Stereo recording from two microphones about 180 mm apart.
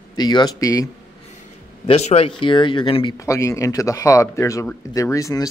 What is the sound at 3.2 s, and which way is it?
Speech, 15° left (ahead or behind).